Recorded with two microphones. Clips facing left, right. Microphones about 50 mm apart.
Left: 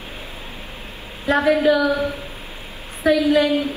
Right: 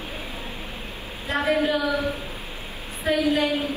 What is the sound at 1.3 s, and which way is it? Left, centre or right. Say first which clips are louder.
Speech: left 6 dB; left.